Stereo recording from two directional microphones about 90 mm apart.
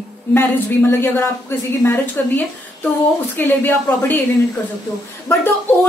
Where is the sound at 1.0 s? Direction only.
25° left (ahead or behind).